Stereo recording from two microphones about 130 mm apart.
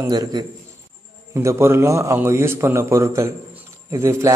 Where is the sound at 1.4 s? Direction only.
20° right (ahead or behind).